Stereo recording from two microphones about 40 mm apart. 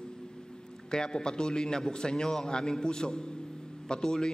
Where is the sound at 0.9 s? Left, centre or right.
Left.